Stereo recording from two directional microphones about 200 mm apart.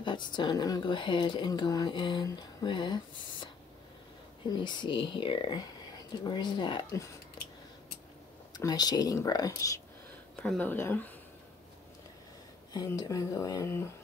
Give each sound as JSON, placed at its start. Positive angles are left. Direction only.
{"t": 0.0, "sound": "speech", "side_deg": 20}
{"t": 4.5, "sound": "speech", "side_deg": 25}
{"t": 8.5, "sound": "speech", "side_deg": 20}
{"t": 12.7, "sound": "speech", "side_deg": 20}